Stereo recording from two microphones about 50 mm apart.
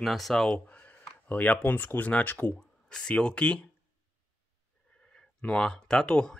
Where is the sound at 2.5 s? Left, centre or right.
Centre.